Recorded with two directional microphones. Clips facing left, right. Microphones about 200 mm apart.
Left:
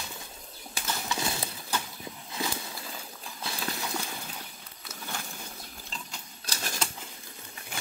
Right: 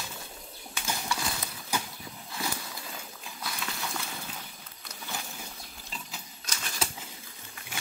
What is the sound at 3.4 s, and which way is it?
Horse, 25° left (ahead or behind).